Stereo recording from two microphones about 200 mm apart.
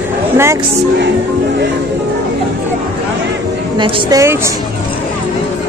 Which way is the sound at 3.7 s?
20° right (ahead or behind).